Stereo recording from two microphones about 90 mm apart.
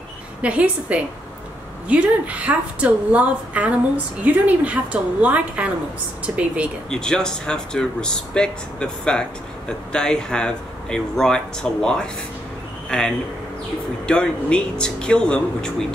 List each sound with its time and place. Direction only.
0.4 s a woman's voice: 15° right (ahead or behind)
6.9 s speech: 5° left (ahead or behind)